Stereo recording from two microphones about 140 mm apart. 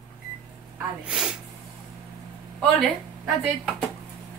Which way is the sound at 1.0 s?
5° right (ahead or behind).